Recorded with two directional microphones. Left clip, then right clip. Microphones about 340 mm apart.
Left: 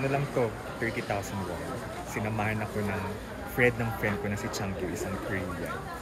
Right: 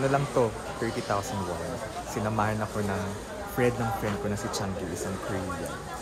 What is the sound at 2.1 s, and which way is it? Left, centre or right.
Speech, centre.